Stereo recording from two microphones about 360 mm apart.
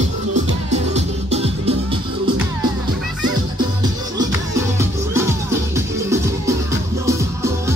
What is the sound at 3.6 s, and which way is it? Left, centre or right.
Music, centre.